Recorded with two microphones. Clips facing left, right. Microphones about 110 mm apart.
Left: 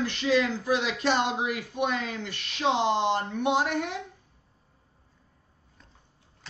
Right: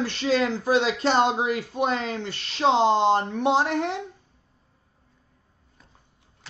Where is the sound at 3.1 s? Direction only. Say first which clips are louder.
Right 5 dB; 45° right (ahead or behind).